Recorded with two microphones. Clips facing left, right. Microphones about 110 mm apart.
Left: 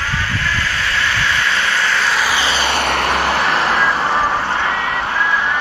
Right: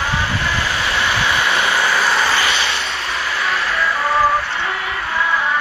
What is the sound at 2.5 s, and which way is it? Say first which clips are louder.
Vehicle: left 5 dB; 60° left (ahead or behind).